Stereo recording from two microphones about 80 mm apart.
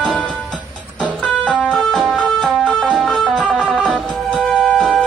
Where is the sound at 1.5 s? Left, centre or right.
Centre.